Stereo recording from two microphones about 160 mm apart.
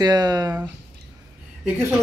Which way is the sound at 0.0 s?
25° right (ahead or behind).